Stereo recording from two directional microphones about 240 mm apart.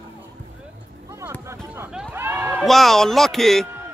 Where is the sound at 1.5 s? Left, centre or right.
Centre.